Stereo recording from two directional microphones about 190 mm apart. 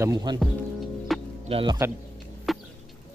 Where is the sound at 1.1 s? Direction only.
Centre (ahead or behind).